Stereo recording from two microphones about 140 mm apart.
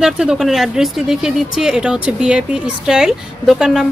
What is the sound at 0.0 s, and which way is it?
Speech, 5° right (ahead or behind).